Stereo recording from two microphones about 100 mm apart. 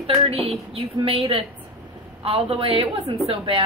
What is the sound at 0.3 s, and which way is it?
A woman's voice, 70° right (ahead or behind).